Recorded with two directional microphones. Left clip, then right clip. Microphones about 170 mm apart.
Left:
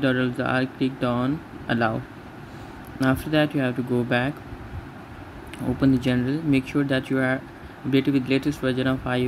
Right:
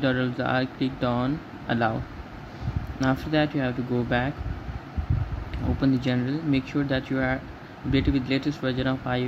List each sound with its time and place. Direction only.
0.0 s speech: 10° left (ahead or behind)
3.0 s speech: 15° left (ahead or behind)
5.8 s speech: 15° left (ahead or behind)